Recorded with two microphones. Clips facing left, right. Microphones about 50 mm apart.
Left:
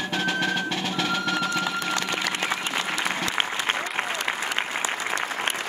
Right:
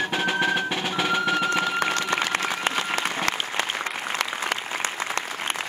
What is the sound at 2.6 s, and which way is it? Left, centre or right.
Applause, right.